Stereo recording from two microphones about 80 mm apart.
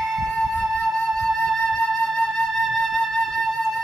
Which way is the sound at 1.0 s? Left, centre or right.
Centre.